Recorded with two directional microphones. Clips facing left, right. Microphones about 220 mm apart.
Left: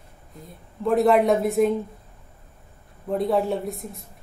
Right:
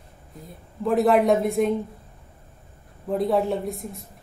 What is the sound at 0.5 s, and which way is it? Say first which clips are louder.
A woman's voice: left 1 dB; centre (ahead or behind).